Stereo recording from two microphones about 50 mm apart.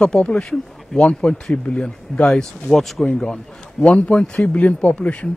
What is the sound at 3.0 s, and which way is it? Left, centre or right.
Speech, centre.